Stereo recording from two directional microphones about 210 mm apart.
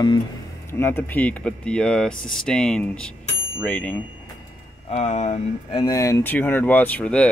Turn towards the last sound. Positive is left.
turn(degrees=5)  # may be behind; listen again after turning